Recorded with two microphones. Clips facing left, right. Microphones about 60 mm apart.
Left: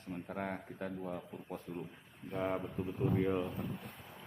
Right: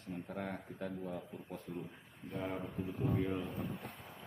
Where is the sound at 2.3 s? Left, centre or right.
Left.